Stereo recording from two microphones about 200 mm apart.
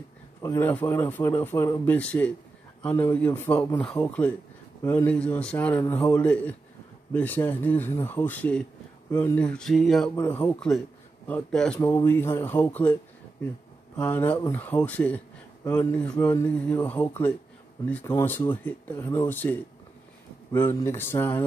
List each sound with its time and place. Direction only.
0.4 s speech: 15° left (ahead or behind)
13.9 s speech: 10° left (ahead or behind)